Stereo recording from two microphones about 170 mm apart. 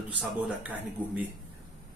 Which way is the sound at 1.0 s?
10° left (ahead or behind).